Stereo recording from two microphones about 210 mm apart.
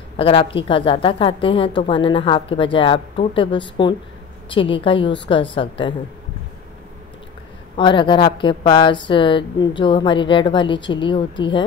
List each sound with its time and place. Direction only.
0.2 s a woman's voice: 25° left (ahead or behind)
7.7 s a woman's voice: 25° left (ahead or behind)